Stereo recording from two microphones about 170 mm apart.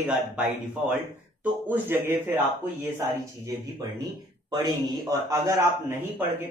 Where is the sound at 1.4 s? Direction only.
10° right (ahead or behind).